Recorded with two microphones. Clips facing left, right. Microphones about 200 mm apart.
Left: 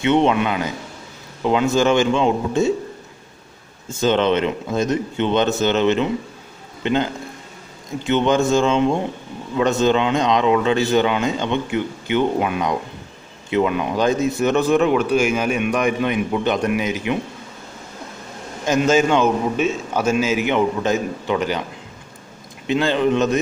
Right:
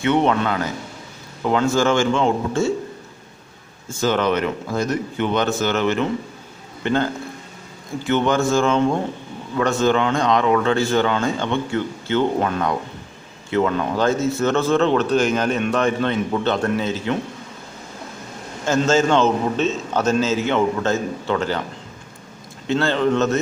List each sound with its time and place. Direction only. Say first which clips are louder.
0.0 s a man's voice: left 2 dB; 20° left (ahead or behind)
4.0 s a man's voice: left 2 dB; 25° left (ahead or behind)
18.7 s a man's voice: left 1 dB; 15° left (ahead or behind)
22.7 s a man's voice: left 1 dB; 15° left (ahead or behind)